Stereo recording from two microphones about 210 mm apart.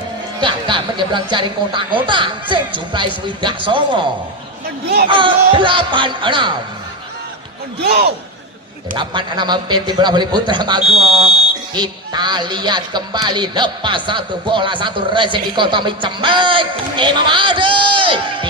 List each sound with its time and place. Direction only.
0.4 s music: 25° right (ahead or behind)
5.1 s music: 25° right (ahead or behind)
7.8 s a man's voice: 50° right (ahead or behind)
8.9 s music: 20° right (ahead or behind)